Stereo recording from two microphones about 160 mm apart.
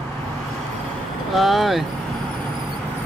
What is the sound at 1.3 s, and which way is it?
Speech, centre (ahead or behind).